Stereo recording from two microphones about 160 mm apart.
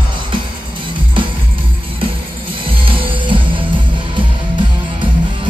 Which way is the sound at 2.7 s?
35° right (ahead or behind).